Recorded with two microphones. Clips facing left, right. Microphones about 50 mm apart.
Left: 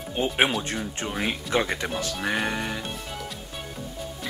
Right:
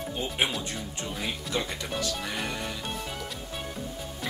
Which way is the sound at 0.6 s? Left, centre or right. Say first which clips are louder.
Left 5 dB; left.